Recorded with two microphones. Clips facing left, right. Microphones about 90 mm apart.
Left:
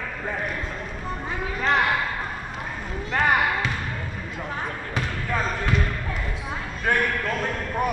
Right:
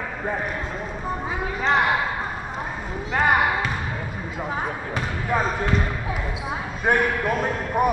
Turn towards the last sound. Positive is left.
turn(degrees=-15)  # may be behind; listen again after turning